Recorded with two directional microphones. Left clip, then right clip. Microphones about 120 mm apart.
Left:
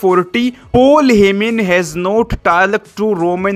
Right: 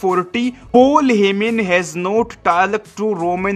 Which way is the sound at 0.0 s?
25° left (ahead or behind).